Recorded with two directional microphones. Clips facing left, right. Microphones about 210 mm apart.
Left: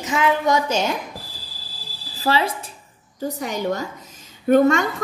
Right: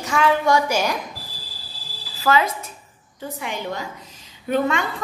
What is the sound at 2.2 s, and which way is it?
A woman's voice, 30° left (ahead or behind).